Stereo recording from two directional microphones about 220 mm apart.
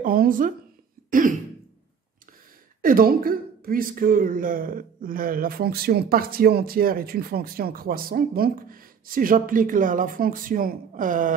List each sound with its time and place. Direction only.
0.0 s speech: 40° right (ahead or behind)
2.8 s speech: 40° right (ahead or behind)